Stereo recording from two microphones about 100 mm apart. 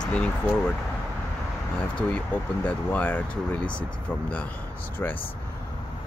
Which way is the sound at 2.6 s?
15° left (ahead or behind).